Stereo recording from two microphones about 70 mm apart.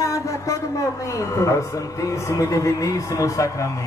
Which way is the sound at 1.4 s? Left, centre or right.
Left.